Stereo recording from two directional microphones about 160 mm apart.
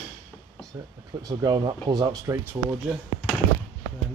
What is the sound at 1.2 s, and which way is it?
Speech, 25° right (ahead or behind).